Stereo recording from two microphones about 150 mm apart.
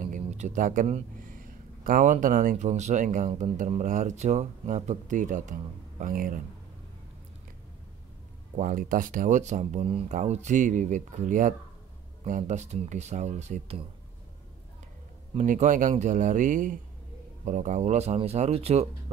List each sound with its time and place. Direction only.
0.0 s a sound: 55° right (ahead or behind)
1.9 s speech: 65° right (ahead or behind)
8.5 s speech: 65° right (ahead or behind); by 13.8 s 45° right (ahead or behind)
15.3 s speech: 55° right (ahead or behind)